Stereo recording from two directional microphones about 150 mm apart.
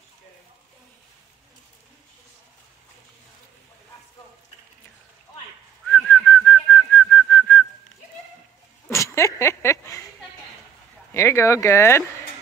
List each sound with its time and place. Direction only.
5.9 s whistling: 5° left (ahead or behind)
8.9 s a sound: 20° left (ahead or behind)
11.1 s speech: 20° left (ahead or behind)